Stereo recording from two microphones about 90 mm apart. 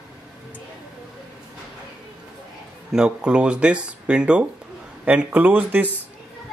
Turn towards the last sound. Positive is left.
turn(degrees=-20)  # may be behind; listen again after turning